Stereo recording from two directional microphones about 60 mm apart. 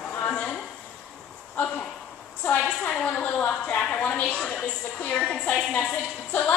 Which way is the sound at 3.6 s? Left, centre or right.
Centre.